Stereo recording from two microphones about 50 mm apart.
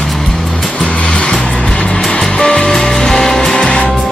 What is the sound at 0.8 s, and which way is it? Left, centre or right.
Vehicle, centre.